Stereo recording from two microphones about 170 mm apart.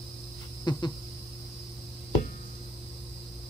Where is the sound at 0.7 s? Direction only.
25° left (ahead or behind).